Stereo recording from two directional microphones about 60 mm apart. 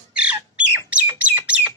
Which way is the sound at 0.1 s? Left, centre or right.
Centre.